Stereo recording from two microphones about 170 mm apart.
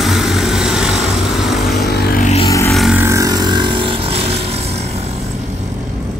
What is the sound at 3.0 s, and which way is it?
Vehicle, 20° right (ahead or behind).